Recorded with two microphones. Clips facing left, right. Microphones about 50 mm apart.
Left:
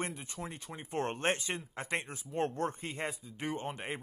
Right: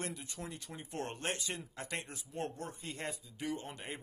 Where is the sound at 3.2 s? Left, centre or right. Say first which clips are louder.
Left 3 dB; left.